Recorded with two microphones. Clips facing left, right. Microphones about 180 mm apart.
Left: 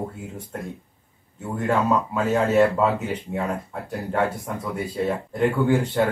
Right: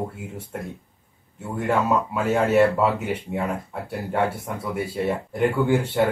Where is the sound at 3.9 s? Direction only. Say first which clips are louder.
Even; 10° right (ahead or behind).